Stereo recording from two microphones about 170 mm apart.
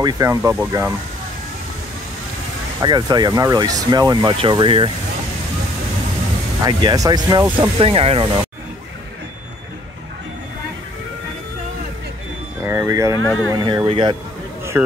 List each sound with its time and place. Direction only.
0.0 s speech: 20° right (ahead or behind)
2.8 s speech: 25° right (ahead or behind)
6.6 s speech: 25° right (ahead or behind)
12.6 s a sound: 15° right (ahead or behind)
13.5 s speech: 25° right (ahead or behind)